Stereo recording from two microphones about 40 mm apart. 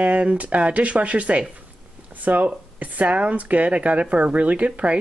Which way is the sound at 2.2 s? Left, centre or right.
Right.